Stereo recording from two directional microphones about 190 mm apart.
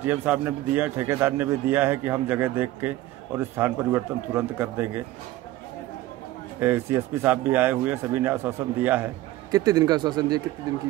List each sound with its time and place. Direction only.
0.0 s a man's voice: 10° right (ahead or behind)
6.6 s a man's voice: 10° right (ahead or behind)